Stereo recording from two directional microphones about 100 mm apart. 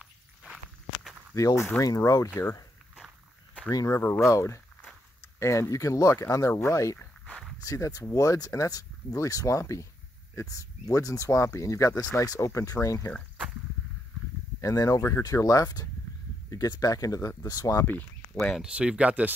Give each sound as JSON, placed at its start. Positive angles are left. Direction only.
{"t": 0.0, "sound": "walk", "side_deg": -5}
{"t": 1.3, "sound": "speech", "side_deg": 30}
{"t": 3.7, "sound": "speech", "side_deg": 30}
{"t": 7.2, "sound": "a sound", "side_deg": 5}
{"t": 7.6, "sound": "speech", "side_deg": 35}
{"t": 14.6, "sound": "speech", "side_deg": 35}
{"t": 18.3, "sound": "speech", "side_deg": 10}
{"t": 18.6, "sound": "speech", "side_deg": -10}